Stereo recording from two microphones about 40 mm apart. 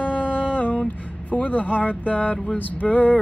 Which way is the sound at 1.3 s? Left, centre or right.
Left.